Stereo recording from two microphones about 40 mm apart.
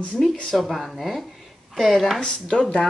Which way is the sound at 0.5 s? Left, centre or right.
Centre.